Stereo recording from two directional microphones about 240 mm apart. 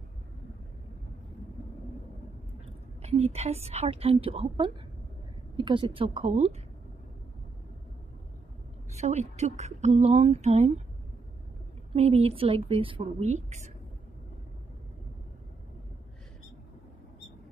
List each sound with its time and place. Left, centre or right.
3.0 s a sound: right
3.3 s speech: right
8.9 s speech: right
11.9 s speech: right